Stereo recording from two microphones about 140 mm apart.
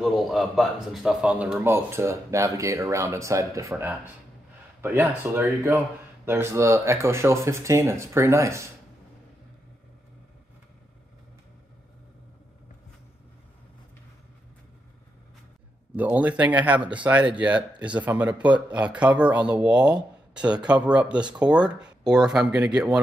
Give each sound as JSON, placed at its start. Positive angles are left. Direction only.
{"t": 0.0, "sound": "a man's voice", "side_deg": 0}
{"t": 16.0, "sound": "speech", "side_deg": -10}